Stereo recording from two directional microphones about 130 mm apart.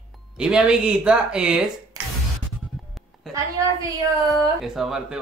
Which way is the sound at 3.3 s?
Centre (ahead or behind).